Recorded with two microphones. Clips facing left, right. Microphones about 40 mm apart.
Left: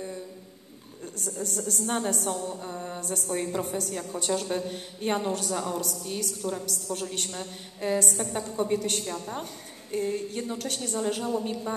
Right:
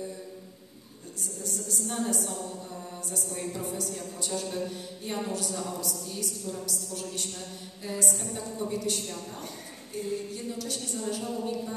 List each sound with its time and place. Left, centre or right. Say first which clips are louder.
1.2 s a man's voice: left 5 dB; left